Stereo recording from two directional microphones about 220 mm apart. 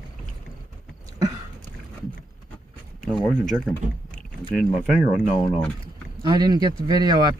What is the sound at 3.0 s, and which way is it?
Speech, centre (ahead or behind).